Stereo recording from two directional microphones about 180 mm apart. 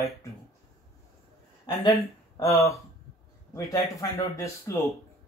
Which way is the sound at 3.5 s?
15° left (ahead or behind).